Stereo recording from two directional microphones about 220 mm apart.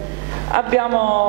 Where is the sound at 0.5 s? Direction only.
15° right (ahead or behind).